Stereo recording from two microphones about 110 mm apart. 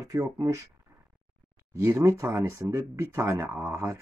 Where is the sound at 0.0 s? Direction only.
30° right (ahead or behind).